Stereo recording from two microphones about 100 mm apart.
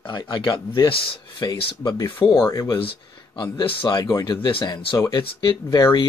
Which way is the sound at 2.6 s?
60° left (ahead or behind).